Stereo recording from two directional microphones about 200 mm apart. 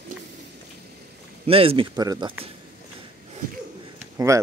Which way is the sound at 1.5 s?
30° right (ahead or behind).